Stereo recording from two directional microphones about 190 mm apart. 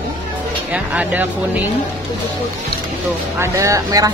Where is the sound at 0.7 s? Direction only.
10° right (ahead or behind).